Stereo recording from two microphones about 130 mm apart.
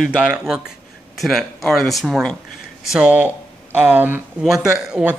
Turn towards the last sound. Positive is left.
turn(degrees=-10)  # may be behind; listen again after turning